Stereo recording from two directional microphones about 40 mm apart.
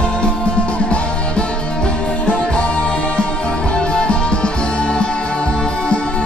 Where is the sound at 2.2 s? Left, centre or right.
Left.